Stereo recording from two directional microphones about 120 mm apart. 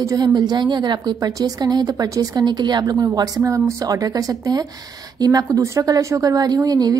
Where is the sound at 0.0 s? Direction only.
30° right (ahead or behind).